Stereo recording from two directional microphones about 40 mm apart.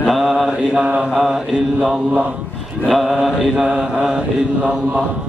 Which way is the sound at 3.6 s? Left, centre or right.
Right.